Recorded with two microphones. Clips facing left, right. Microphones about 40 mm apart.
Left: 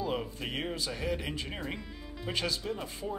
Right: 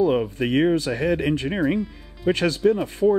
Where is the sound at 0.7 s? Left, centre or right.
Right.